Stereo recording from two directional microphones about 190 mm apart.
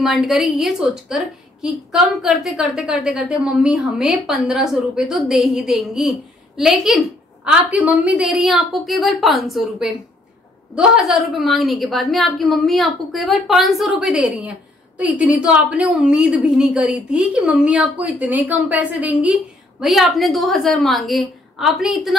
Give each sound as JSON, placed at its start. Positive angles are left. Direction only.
{"t": 0.0, "sound": "a woman's voice", "side_deg": 0}